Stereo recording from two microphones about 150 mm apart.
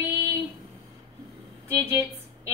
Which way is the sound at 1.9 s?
20° right (ahead or behind).